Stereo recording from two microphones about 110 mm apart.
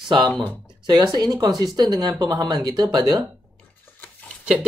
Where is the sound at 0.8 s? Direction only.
40° right (ahead or behind).